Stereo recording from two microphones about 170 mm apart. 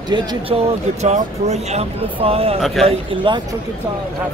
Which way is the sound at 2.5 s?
Centre (ahead or behind).